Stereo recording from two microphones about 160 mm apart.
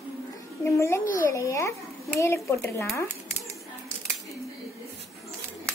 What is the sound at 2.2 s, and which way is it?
Speech, 15° left (ahead or behind).